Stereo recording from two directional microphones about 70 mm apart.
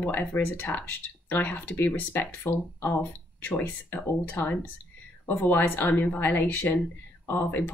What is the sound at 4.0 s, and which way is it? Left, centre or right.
Speech, left.